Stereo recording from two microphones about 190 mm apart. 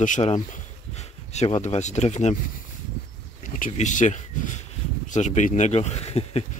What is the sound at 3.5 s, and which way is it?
Speech, 45° left (ahead or behind).